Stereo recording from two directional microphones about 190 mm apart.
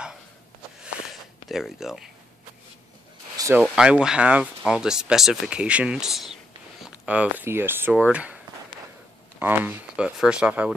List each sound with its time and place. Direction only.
1.5 s speech: centre (ahead or behind)
3.3 s a sound: 15° right (ahead or behind)
3.7 s speech: 5° right (ahead or behind)
9.4 s speech: 10° right (ahead or behind)